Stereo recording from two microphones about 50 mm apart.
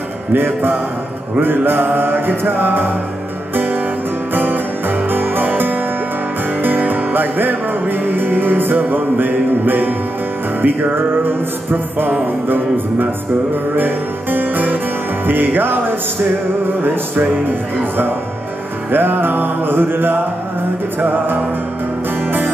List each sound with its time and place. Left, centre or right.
0.3 s music: right
4.3 s music: right
17.5 s music: right